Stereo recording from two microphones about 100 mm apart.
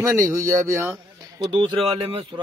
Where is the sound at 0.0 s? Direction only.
35° right (ahead or behind).